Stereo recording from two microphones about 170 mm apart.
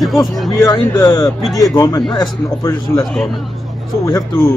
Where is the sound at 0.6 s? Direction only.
15° left (ahead or behind).